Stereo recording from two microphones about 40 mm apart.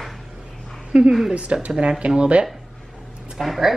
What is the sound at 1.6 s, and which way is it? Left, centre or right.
Speech, right.